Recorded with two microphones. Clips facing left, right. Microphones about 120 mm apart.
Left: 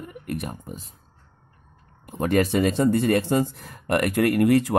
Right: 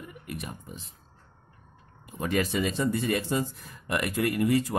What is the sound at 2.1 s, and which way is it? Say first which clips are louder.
Speech: left 7 dB; 55° left (ahead or behind).